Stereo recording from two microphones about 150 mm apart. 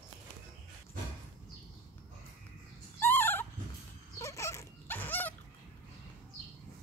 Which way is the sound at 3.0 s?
15° left (ahead or behind).